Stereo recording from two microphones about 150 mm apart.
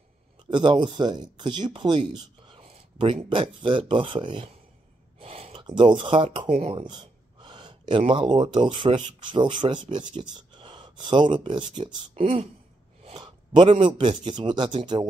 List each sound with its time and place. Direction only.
0.5 s speech: 30° right (ahead or behind)
5.2 s a sound: 40° right (ahead or behind)
5.7 s speech: 30° right (ahead or behind)
6.5 s a sound: 40° right (ahead or behind)
8.1 s speech: 30° right (ahead or behind)
12.1 s speech: 45° right (ahead or behind)
13.2 s speech: 35° right (ahead or behind)